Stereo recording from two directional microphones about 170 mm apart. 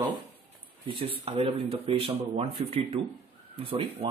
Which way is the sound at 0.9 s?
30° right (ahead or behind).